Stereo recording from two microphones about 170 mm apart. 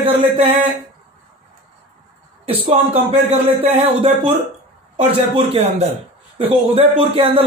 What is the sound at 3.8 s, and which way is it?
Speech, 35° right (ahead or behind).